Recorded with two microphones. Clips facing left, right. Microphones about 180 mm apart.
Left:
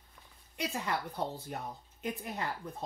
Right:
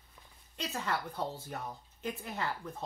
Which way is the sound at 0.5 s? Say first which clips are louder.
Left 1 dB; 10° left (ahead or behind).